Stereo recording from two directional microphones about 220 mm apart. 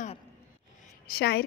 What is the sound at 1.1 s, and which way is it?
Speech, 45° left (ahead or behind).